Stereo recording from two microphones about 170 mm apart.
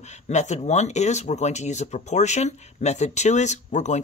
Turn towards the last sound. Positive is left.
turn(degrees=45)  # may be behind; listen again after turning